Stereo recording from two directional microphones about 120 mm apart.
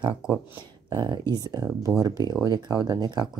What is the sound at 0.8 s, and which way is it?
Speech, 35° right (ahead or behind).